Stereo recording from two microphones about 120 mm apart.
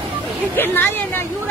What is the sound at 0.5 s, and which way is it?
Speech, 15° left (ahead or behind).